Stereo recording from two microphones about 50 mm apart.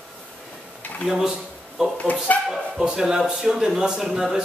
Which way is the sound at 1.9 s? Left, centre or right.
Left.